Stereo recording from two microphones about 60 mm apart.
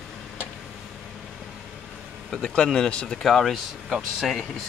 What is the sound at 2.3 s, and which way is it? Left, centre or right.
Speech, centre.